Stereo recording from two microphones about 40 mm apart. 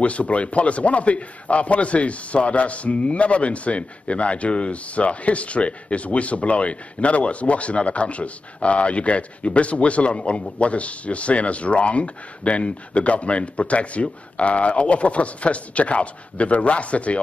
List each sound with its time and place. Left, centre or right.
0.0 s a man's voice: left